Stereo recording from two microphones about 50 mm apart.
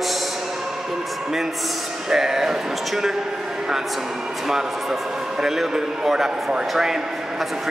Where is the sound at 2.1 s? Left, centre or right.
Centre.